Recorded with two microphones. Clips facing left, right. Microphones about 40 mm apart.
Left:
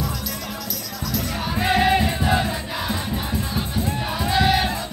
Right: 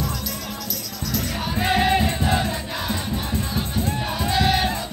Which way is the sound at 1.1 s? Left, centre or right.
Centre.